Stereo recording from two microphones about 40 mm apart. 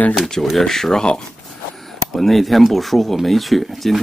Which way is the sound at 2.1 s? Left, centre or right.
Centre.